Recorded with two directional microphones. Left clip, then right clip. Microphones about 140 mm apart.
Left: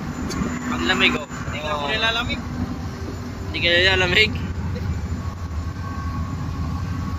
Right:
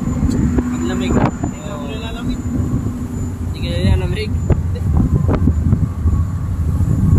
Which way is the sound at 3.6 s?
5° left (ahead or behind).